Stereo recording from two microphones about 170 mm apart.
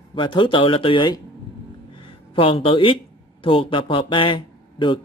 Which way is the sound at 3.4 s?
30° left (ahead or behind).